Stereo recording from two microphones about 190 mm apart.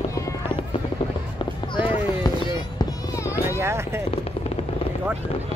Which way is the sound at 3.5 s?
15° right (ahead or behind).